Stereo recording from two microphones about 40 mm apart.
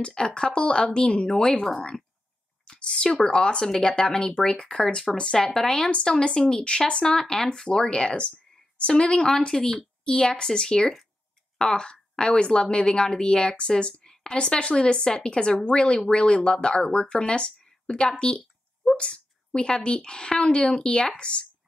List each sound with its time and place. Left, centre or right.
0.0 s a woman's voice: left
9.5 s a woman's voice: centre